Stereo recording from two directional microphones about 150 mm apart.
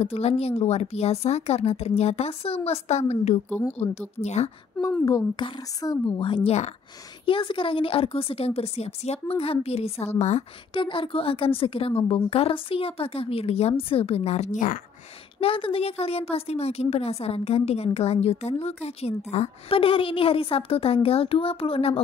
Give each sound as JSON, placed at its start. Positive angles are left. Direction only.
{"t": 0.0, "sound": "a woman's voice", "side_deg": 45}
{"t": 3.4, "sound": "speech", "side_deg": 10}
{"t": 3.7, "sound": "a woman's voice", "side_deg": 45}
{"t": 5.0, "sound": "a woman's voice", "side_deg": 25}
{"t": 10.7, "sound": "a woman's voice", "side_deg": 35}
{"t": 15.4, "sound": "a woman's voice", "side_deg": 40}